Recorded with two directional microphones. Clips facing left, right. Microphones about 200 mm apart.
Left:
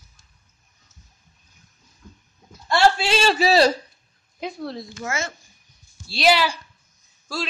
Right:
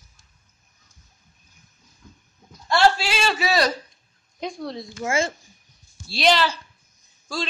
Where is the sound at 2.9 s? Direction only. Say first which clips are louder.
Left 5 dB; 30° left (ahead or behind).